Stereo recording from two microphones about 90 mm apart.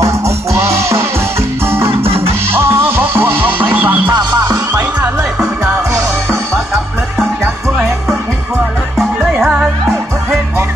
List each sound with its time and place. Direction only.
0.0 s music: 35° right (ahead or behind)
4.0 s music: 55° right (ahead or behind)
5.4 s music: 35° right (ahead or behind)
8.9 s music: 10° right (ahead or behind)